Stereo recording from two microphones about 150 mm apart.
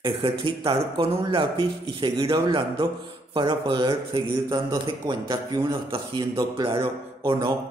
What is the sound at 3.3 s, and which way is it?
A man's voice, 35° right (ahead or behind).